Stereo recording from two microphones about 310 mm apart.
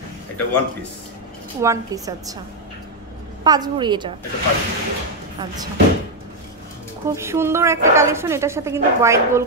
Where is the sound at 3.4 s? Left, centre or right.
Centre.